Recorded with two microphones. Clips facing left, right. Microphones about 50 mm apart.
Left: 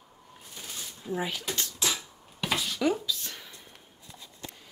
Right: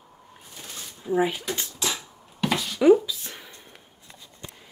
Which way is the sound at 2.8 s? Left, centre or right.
Centre.